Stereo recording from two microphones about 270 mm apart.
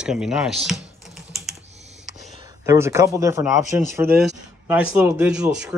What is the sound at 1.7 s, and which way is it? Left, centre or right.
Computer keyboard, right.